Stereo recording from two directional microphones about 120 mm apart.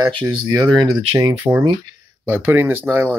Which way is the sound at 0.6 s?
35° right (ahead or behind).